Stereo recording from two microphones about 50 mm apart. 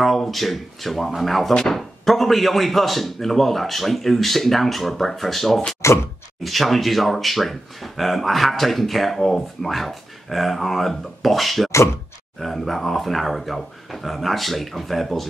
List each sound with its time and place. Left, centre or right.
0.0 s speech: centre
5.8 s a sound: left
6.4 s speech: centre